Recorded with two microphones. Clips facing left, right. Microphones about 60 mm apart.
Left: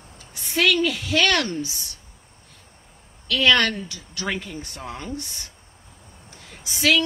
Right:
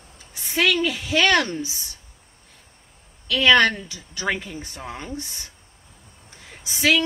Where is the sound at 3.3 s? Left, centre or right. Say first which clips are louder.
Right 3 dB; centre.